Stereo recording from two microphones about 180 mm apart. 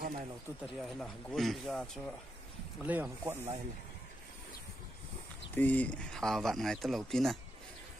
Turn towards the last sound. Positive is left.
turn(degrees=0)  # may be behind; listen again after turning